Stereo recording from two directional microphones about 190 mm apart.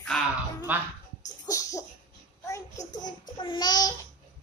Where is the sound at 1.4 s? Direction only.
15° left (ahead or behind).